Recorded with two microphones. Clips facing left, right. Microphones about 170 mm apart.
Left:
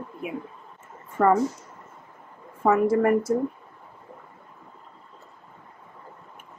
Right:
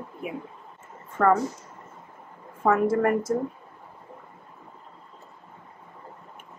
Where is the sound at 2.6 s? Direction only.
5° left (ahead or behind).